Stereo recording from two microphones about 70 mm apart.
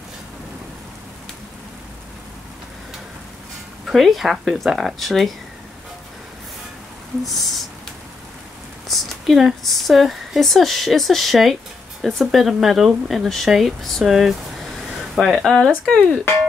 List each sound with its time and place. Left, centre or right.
3.8 s speech: centre
7.2 s speech: centre
8.8 s speech: centre
15.9 s speech: centre